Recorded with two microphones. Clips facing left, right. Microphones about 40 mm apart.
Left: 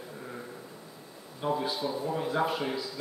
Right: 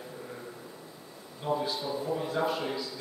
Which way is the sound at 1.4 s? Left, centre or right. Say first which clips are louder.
Left 1 dB; centre.